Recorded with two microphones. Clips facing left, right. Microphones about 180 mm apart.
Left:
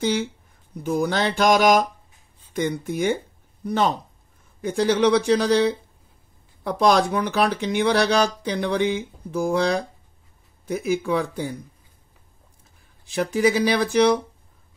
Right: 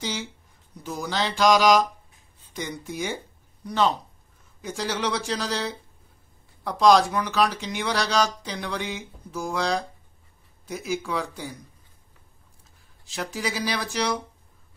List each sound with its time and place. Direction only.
0.0 s speech: 55° left (ahead or behind)
13.0 s speech: 55° left (ahead or behind)